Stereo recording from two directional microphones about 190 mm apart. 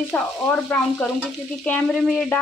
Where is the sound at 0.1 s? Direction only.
10° left (ahead or behind).